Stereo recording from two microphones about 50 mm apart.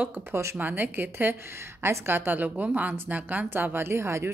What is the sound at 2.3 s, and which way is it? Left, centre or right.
Speech, right.